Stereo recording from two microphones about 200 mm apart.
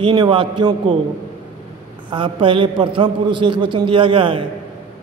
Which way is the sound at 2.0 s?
25° right (ahead or behind).